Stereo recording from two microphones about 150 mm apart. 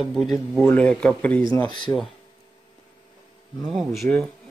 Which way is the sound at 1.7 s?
30° left (ahead or behind).